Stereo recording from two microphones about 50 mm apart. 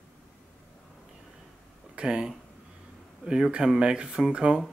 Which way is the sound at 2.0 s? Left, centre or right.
Centre.